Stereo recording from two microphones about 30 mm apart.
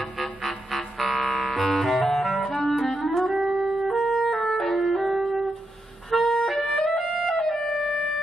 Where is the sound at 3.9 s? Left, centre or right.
Centre.